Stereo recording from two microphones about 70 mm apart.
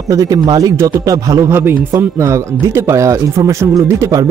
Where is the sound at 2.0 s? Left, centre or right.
Right.